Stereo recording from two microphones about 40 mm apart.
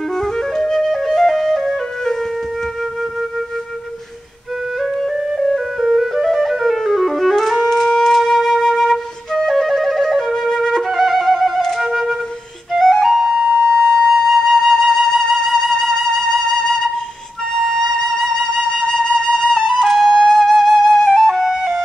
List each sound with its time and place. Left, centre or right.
0.1 s flute: centre
4.7 s flute: centre
5.5 s music: centre
7.9 s flute: centre
10.8 s music: centre
11.8 s flute: centre
12.8 s flute: centre
13.6 s flute: left
14.1 s flute: centre
21.3 s flute: centre